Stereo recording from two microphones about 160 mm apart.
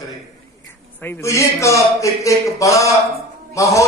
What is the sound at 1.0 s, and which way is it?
Speech, 15° left (ahead or behind).